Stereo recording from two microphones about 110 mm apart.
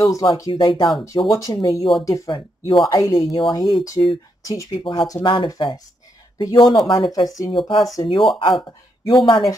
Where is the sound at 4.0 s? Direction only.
45° left (ahead or behind).